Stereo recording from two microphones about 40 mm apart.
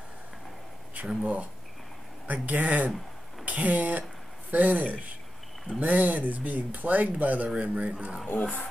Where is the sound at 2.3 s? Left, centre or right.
Right.